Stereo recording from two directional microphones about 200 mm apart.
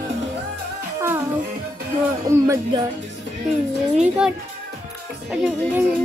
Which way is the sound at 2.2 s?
15° right (ahead or behind).